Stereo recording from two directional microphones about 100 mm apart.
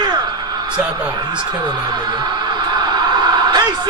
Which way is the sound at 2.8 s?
45° right (ahead or behind).